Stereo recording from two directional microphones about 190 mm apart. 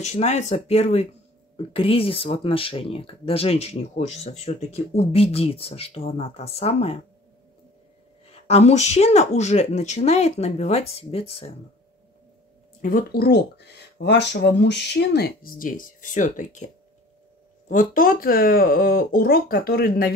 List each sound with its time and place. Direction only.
0.0 s speech: 35° left (ahead or behind)
8.3 s speech: 35° left (ahead or behind)
12.8 s speech: 50° left (ahead or behind)
17.6 s speech: 45° left (ahead or behind)